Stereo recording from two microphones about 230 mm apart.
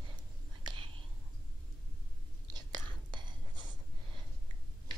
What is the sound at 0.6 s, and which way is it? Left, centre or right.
Whispering, right.